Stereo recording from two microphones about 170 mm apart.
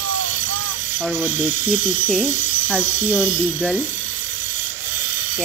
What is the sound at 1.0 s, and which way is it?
Speech, 10° right (ahead or behind).